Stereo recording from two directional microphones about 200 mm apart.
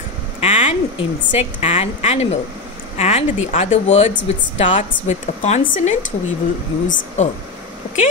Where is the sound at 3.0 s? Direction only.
30° left (ahead or behind).